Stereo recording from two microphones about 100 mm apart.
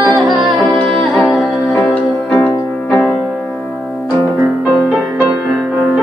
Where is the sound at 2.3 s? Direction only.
15° left (ahead or behind).